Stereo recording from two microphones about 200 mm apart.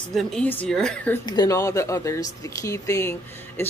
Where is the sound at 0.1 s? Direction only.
5° left (ahead or behind).